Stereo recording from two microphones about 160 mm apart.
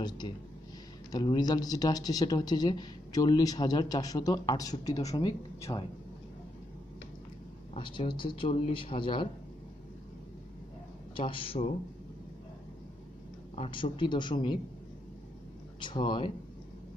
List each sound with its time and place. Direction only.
1.1 s speech: 25° left (ahead or behind)
7.7 s a man's voice: 35° left (ahead or behind)
11.1 s a man's voice: 35° left (ahead or behind)
13.6 s a man's voice: 35° left (ahead or behind)
15.8 s speech: 30° left (ahead or behind)